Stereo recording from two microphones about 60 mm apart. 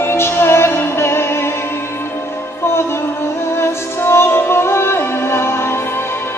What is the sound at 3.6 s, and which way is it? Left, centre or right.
Music, left.